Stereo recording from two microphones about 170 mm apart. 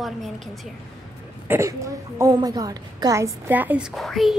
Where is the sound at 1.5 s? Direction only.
20° right (ahead or behind).